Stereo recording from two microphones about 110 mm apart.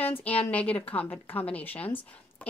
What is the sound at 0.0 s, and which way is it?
A woman's voice, 15° left (ahead or behind).